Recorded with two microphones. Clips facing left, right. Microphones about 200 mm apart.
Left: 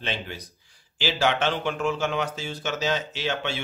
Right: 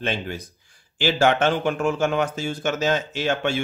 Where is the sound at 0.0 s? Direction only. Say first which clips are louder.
Right 5 dB; 50° right (ahead or behind).